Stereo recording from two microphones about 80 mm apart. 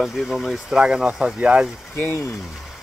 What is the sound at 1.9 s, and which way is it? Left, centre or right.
Speech, left.